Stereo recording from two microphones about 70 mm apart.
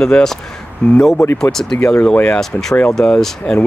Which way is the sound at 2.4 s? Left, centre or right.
Centre.